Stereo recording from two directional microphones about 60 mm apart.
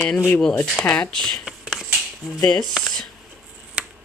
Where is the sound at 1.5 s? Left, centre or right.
Centre.